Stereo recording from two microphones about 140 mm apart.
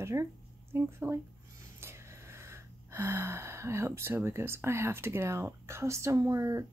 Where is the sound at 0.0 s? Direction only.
20° right (ahead or behind).